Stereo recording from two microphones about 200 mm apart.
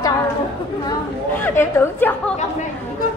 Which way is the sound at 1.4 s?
10° left (ahead or behind).